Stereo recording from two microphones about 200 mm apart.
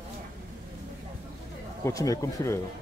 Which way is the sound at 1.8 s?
15° left (ahead or behind).